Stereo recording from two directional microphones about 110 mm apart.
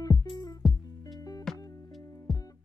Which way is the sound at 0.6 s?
Centre (ahead or behind).